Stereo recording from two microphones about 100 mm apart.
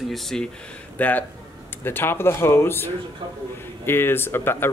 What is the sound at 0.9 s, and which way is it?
Speech, 15° left (ahead or behind).